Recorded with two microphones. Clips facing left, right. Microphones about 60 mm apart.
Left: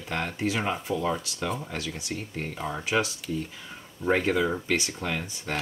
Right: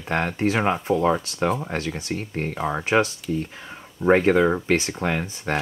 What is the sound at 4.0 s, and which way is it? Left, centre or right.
Speech, right.